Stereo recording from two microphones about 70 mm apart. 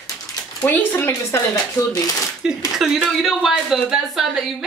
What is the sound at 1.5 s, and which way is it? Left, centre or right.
Speech, left.